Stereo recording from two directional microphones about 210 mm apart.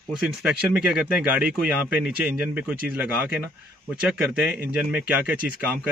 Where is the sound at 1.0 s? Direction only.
5° right (ahead or behind).